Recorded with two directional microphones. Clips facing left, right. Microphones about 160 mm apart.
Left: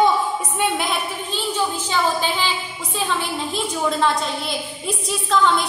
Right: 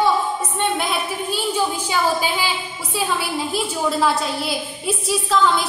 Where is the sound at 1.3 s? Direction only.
10° right (ahead or behind).